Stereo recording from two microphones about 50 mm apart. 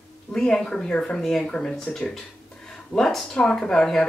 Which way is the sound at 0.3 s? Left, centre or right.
Centre.